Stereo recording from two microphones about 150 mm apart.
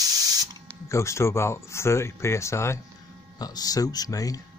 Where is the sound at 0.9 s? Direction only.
20° left (ahead or behind).